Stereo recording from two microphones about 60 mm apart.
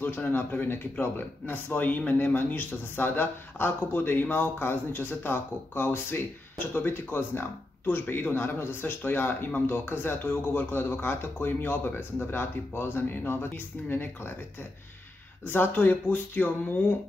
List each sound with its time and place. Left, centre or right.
0.0 s a man's voice: left
15.4 s a man's voice: left